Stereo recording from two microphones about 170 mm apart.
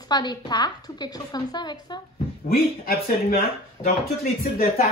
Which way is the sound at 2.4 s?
60° left (ahead or behind).